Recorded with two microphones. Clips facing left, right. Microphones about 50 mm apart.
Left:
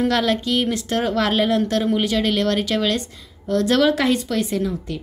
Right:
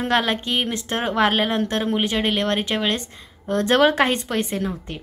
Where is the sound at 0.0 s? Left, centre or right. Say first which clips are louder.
Left 2 dB; right.